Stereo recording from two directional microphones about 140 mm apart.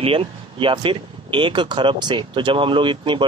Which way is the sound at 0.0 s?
40° right (ahead or behind).